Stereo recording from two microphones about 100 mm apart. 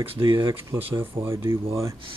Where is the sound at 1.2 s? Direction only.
30° right (ahead or behind).